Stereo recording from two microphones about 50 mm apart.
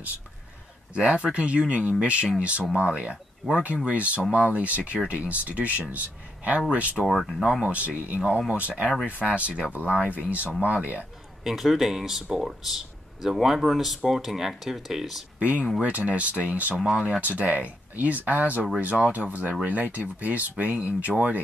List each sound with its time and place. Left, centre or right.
0.9 s speech: right
7.1 s speech: centre
7.6 s speech: right
11.4 s speech: centre
15.3 s speech: right